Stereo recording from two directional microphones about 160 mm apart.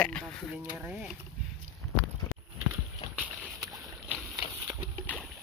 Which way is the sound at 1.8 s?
15° left (ahead or behind).